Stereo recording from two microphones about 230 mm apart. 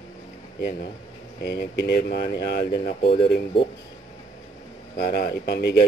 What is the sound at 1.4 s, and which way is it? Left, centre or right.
Speech, left.